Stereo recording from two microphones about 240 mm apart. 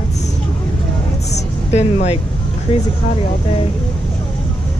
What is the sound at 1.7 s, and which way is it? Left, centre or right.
Speech, left.